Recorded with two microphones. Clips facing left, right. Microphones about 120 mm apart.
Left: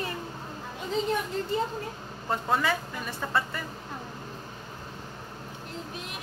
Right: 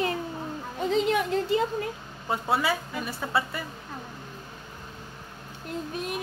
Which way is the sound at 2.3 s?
10° right (ahead or behind).